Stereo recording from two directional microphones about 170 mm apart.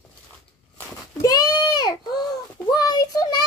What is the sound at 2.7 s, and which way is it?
Child singing, 25° left (ahead or behind).